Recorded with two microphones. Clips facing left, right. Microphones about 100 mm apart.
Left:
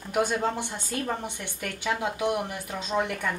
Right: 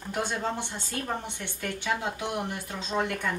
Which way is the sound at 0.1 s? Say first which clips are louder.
Left 4 dB; 15° left (ahead or behind).